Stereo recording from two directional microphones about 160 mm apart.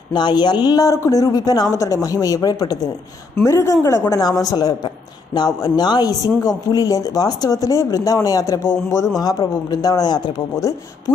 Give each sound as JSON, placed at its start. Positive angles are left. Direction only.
{"t": 0.1, "sound": "a woman's voice", "side_deg": 25}